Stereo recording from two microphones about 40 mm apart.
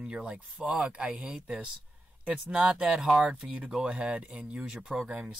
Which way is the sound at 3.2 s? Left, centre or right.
Right.